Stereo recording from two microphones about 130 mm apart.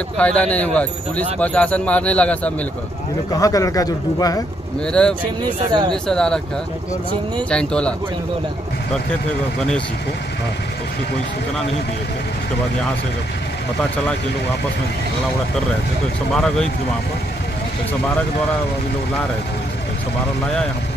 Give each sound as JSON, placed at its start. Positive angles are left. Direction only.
{"t": 0.2, "sound": "speech", "side_deg": 10}
{"t": 3.3, "sound": "a man's voice", "side_deg": 25}
{"t": 4.8, "sound": "speech", "side_deg": 5}
{"t": 5.4, "sound": "speech", "side_deg": -35}
{"t": 6.0, "sound": "speech", "side_deg": 5}
{"t": 7.4, "sound": "speech", "side_deg": 5}
{"t": 16.3, "sound": "speech", "side_deg": 5}